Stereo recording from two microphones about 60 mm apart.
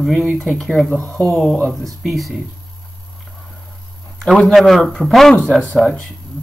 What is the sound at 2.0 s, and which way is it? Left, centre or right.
Speech, centre.